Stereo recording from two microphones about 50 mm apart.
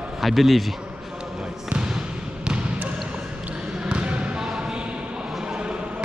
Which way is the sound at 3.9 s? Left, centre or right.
Right.